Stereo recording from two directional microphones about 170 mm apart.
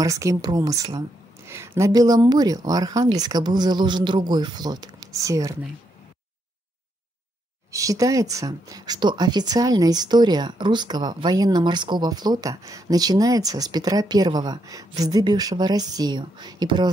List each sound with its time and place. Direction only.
0.0 s speech: 20° right (ahead or behind)
7.7 s speech: 20° right (ahead or behind)